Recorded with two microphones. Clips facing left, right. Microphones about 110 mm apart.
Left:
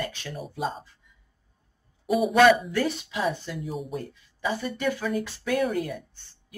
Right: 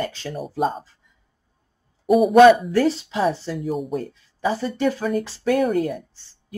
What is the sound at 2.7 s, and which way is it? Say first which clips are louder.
Speech: right 7 dB; 35° right (ahead or behind).